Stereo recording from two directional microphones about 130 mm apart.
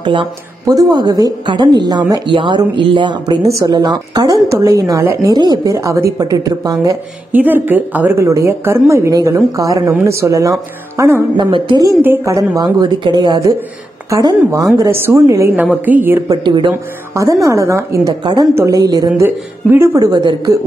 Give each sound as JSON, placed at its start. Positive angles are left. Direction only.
{"t": 0.0, "sound": "a woman's voice", "side_deg": -40}
{"t": 3.4, "sound": "a woman's voice", "side_deg": -25}
{"t": 5.3, "sound": "a woman's voice", "side_deg": -30}
{"t": 7.3, "sound": "a woman's voice", "side_deg": -15}
{"t": 11.3, "sound": "a woman's voice", "side_deg": -35}
{"t": 12.0, "sound": "a woman's voice", "side_deg": -20}
{"t": 15.5, "sound": "a woman's voice", "side_deg": -10}
{"t": 16.3, "sound": "a woman's voice", "side_deg": -35}
{"t": 17.1, "sound": "a woman's voice", "side_deg": -25}
{"t": 18.5, "sound": "a woman's voice", "side_deg": -20}
{"t": 18.8, "sound": "a woman's voice", "side_deg": -30}